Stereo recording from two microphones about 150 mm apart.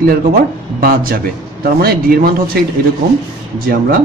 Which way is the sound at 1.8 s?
85° right.